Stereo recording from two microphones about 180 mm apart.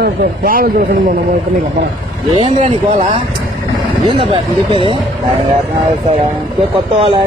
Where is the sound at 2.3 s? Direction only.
35° right (ahead or behind).